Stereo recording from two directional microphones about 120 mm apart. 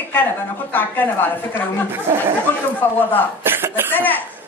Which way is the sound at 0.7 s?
15° left (ahead or behind).